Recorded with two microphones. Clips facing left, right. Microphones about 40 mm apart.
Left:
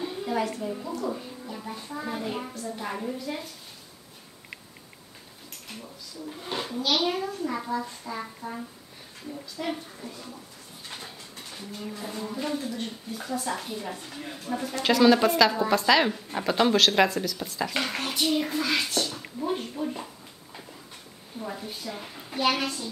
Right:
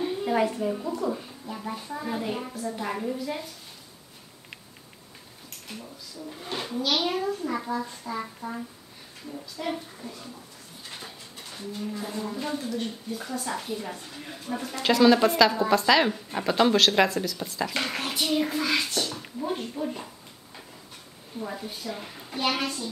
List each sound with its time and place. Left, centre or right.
0.2 s a woman's voice: centre
2.0 s speech: centre
6.6 s speech: centre
9.6 s speech: centre
11.0 s dog: centre
12.0 s speech: centre
21.4 s speech: centre